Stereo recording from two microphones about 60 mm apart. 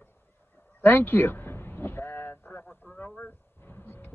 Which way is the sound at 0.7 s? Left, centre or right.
Left.